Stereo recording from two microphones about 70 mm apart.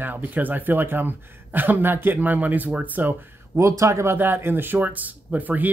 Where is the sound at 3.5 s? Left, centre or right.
Right.